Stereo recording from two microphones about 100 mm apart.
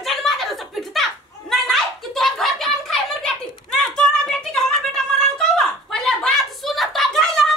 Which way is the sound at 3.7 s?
5° left (ahead or behind).